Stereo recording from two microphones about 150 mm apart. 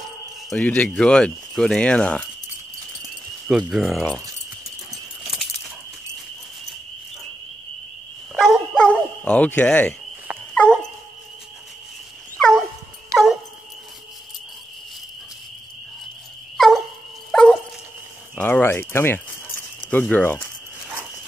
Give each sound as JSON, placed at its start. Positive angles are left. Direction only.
{"t": 0.5, "sound": "speech", "side_deg": 10}
{"t": 3.4, "sound": "speech", "side_deg": -5}
{"t": 5.2, "sound": "keys jangling", "side_deg": 0}
{"t": 8.4, "sound": "dog", "side_deg": 5}
{"t": 12.4, "sound": "dog", "side_deg": 5}
{"t": 13.1, "sound": "dog", "side_deg": -25}
{"t": 16.5, "sound": "dog", "side_deg": 0}
{"t": 18.3, "sound": "keys jangling", "side_deg": 10}
{"t": 19.9, "sound": "speech", "side_deg": 10}